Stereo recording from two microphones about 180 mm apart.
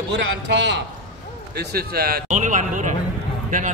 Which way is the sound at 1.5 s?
60° right (ahead or behind).